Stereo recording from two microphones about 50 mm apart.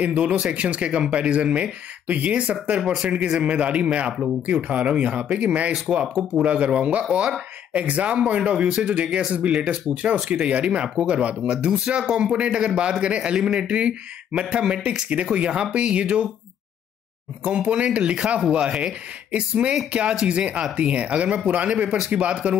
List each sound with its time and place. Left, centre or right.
0.0 s speech: right
17.4 s speech: right